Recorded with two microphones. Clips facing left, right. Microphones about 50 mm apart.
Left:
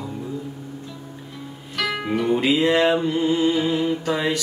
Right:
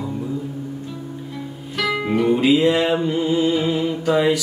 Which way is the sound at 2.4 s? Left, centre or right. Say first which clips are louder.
Even; centre.